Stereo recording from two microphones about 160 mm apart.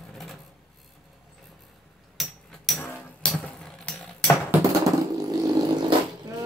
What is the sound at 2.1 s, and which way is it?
Hammer, centre (ahead or behind).